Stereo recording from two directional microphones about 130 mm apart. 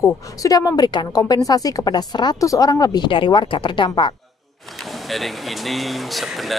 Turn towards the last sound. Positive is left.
turn(degrees=0)  # may be behind; listen again after turning